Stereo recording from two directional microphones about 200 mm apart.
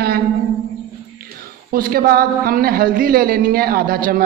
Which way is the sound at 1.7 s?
45° right (ahead or behind).